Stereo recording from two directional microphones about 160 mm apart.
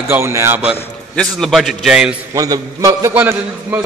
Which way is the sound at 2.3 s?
20° right (ahead or behind).